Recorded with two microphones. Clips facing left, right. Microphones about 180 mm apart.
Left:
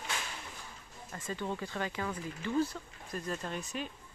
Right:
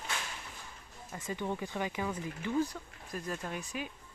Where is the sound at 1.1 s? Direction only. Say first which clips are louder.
Right 1 dB; 15° right (ahead or behind).